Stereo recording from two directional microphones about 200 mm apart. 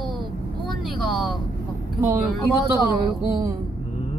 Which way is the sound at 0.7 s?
Centre (ahead or behind).